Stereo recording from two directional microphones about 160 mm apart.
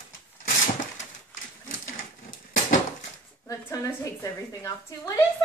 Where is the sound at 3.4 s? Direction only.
20° left (ahead or behind).